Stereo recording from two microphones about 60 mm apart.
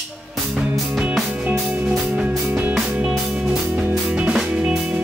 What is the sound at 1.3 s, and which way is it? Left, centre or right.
Music, centre.